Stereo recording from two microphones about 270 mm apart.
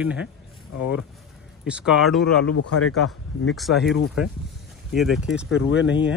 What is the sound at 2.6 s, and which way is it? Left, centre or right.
Speech, left.